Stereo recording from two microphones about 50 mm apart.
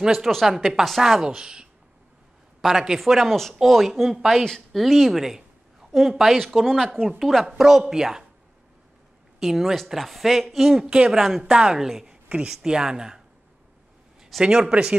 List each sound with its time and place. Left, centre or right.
0.0 s a woman's voice: centre
9.4 s a woman's voice: centre
14.4 s a woman's voice: centre